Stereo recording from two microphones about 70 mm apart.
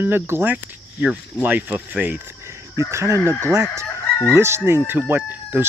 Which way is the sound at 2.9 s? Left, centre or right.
Right.